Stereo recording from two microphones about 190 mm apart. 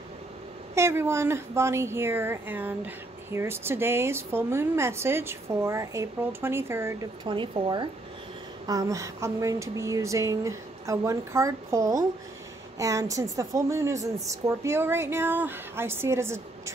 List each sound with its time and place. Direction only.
0.7 s a woman's voice: 15° right (ahead or behind)
7.2 s a woman's voice: 25° right (ahead or behind)